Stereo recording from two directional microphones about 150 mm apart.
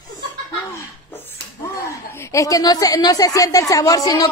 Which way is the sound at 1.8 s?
20° left (ahead or behind).